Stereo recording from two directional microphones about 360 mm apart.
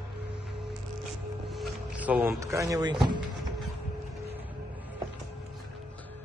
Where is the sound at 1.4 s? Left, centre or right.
Centre.